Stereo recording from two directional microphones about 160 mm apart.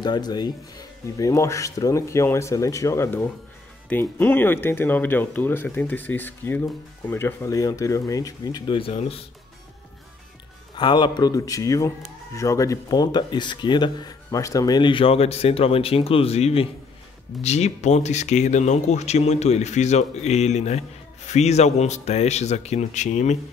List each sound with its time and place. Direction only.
0.0 s speech: 25° left (ahead or behind)
10.8 s speech: 30° left (ahead or behind); by 23.3 s 45° left (ahead or behind)